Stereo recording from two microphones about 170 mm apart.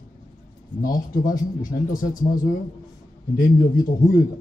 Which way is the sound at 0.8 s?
55° left (ahead or behind).